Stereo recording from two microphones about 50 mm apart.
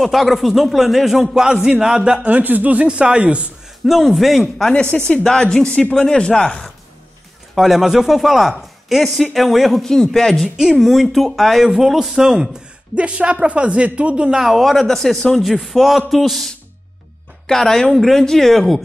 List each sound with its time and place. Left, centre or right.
0.0 s a man's voice: centre
2.2 s a woman's voice: right
3.8 s speech: centre
4.9 s speech: centre
5.7 s speech: left
7.5 s speech: centre
9.8 s speech: centre
10.6 s a man's voice: centre
12.9 s a woman's voice: right
14.4 s speech: centre
15.0 s speech: centre
15.3 s speech: centre